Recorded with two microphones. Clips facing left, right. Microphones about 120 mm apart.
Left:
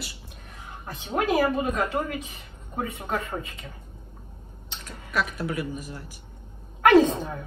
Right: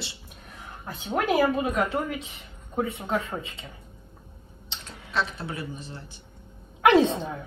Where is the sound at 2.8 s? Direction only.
25° right (ahead or behind).